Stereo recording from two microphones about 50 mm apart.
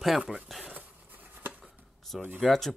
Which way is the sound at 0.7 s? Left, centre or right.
Right.